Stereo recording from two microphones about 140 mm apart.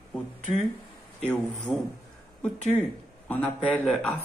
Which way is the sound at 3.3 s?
5° left (ahead or behind).